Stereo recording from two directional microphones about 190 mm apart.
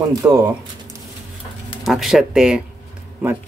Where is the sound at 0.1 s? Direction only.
20° right (ahead or behind).